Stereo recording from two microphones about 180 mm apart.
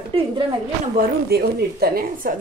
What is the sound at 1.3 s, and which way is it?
Speech, 55° right (ahead or behind).